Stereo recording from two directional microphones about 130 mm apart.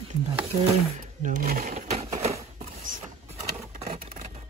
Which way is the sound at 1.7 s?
55° right (ahead or behind).